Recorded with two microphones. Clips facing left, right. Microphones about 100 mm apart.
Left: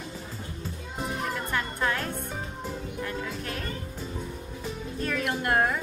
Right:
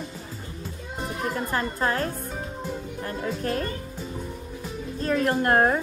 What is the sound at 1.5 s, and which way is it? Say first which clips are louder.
Music: right 3 dB; 35° right (ahead or behind).